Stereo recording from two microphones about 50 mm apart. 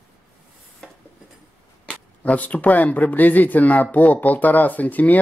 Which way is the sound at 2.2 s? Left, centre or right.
Left.